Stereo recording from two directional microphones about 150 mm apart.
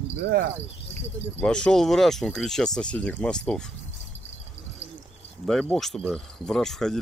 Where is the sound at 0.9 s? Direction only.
5° left (ahead or behind).